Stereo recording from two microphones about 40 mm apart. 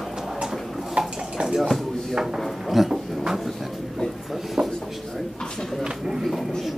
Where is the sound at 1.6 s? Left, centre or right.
Centre.